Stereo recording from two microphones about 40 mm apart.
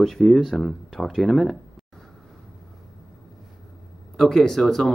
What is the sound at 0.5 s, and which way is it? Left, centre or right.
Speech, centre.